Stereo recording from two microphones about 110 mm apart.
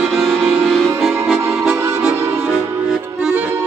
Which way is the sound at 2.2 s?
20° right (ahead or behind).